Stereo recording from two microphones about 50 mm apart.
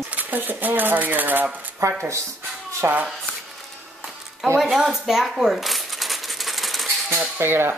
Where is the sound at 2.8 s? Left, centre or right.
Right.